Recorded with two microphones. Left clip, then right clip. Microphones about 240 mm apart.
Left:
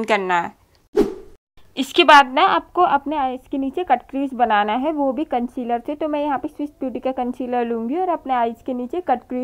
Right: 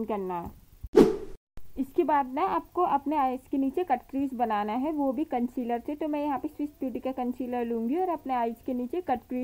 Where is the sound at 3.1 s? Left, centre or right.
Centre.